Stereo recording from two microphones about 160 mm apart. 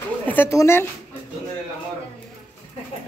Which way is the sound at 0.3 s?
15° left (ahead or behind).